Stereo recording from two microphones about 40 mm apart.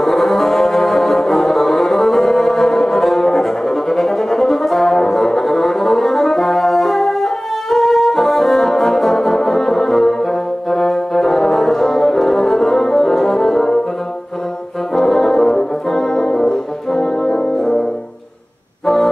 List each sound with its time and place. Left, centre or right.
0.0 s brass instrument: centre
15.0 s brass instrument: centre